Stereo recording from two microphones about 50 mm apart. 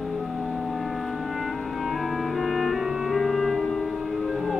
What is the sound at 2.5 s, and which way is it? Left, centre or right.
Music, centre.